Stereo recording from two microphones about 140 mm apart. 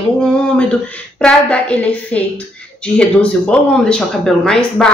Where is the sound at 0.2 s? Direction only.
5° left (ahead or behind).